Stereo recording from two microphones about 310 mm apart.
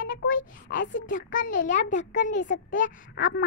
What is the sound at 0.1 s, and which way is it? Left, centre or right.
A child's voice, left.